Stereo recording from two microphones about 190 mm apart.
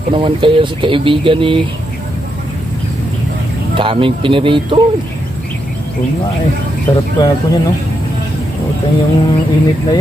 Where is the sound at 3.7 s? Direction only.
25° right (ahead or behind).